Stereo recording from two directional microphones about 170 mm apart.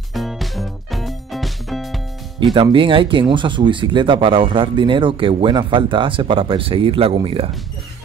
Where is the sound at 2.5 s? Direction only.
30° right (ahead or behind).